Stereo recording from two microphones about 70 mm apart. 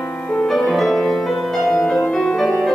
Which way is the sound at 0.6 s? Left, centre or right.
Centre.